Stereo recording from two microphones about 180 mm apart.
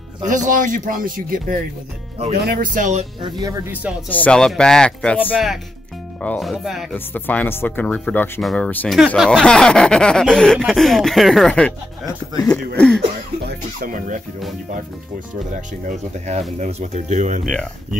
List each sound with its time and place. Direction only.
0.3 s speech: 45° right (ahead or behind)
3.2 s speech: 25° right (ahead or behind)
4.1 s snicker: 5° left (ahead or behind)
7.2 s speech: 10° left (ahead or behind)
9.1 s snicker: 5° left (ahead or behind)
13.5 s speech: 50° right (ahead or behind)
15.5 s speech: 40° right (ahead or behind)